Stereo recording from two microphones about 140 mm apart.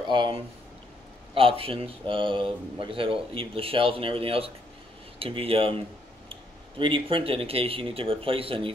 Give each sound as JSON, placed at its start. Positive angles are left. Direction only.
{"t": 0.1, "sound": "speech", "side_deg": -35}
{"t": 6.8, "sound": "speech", "side_deg": -40}